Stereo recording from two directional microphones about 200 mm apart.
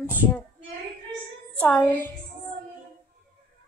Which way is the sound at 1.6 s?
10° left (ahead or behind).